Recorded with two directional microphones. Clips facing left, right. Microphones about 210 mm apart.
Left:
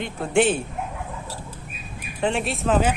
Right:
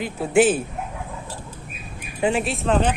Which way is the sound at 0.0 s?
5° right (ahead or behind).